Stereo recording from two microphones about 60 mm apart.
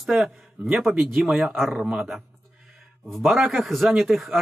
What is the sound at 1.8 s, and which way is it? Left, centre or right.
Speech, centre.